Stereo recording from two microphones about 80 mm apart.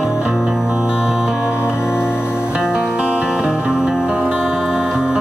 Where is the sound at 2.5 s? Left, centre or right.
Centre.